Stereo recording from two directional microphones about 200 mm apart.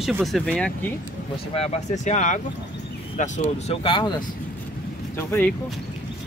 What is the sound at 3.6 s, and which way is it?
Speech, 25° left (ahead or behind).